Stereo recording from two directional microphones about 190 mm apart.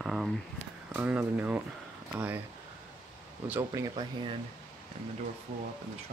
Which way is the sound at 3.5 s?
15° right (ahead or behind).